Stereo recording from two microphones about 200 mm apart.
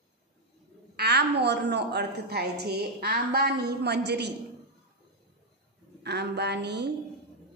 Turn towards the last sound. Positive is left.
turn(degrees=-55)  # may be behind; listen again after turning